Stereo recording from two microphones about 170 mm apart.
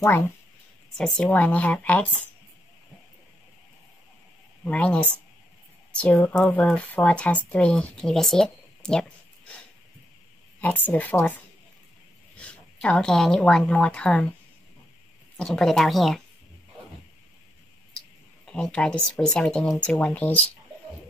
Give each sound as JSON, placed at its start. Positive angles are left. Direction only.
{"t": 0.9, "sound": "speech", "side_deg": 5}
{"t": 4.6, "sound": "speech", "side_deg": 5}
{"t": 10.6, "sound": "speech", "side_deg": 10}
{"t": 15.3, "sound": "speech", "side_deg": 5}
{"t": 18.4, "sound": "speech", "side_deg": 5}